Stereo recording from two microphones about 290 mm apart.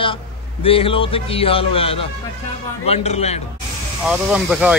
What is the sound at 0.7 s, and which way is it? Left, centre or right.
Speech, centre.